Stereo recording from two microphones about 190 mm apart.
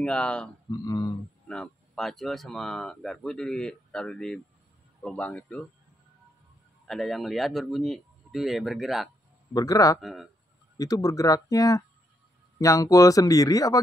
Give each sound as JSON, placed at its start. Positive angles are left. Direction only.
{"t": 0.0, "sound": "speech", "side_deg": 5}
{"t": 0.7, "sound": "a sound", "side_deg": 20}
{"t": 1.5, "sound": "speech", "side_deg": 5}
{"t": 6.9, "sound": "speech", "side_deg": 0}
{"t": 9.5, "sound": "speech", "side_deg": 20}
{"t": 9.9, "sound": "speech", "side_deg": 0}
{"t": 10.8, "sound": "speech", "side_deg": 20}